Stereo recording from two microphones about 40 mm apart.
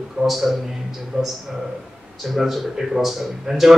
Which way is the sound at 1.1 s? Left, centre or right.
Right.